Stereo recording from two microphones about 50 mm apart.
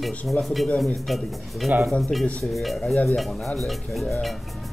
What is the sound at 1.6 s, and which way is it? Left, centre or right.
Dishes, centre.